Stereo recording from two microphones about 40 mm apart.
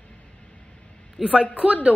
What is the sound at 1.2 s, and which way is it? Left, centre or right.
Speech, right.